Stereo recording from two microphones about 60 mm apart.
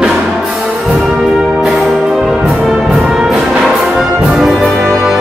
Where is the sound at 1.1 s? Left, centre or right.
Centre.